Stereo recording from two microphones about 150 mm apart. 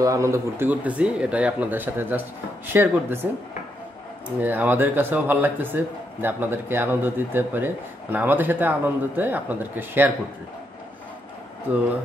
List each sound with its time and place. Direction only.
0.0 s speech: 20° right (ahead or behind)
4.4 s speech: 10° right (ahead or behind)